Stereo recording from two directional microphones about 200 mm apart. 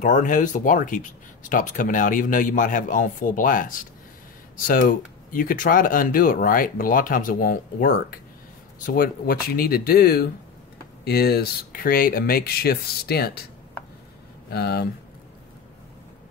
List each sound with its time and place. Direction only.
0.0 s speech: 40° left (ahead or behind)
14.5 s speech: 50° left (ahead or behind)